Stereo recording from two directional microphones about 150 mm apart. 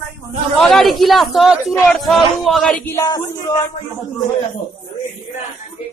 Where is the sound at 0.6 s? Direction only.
Centre (ahead or behind).